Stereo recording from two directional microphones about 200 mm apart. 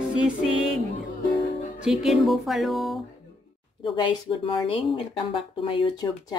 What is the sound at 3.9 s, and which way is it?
Speech, 25° left (ahead or behind).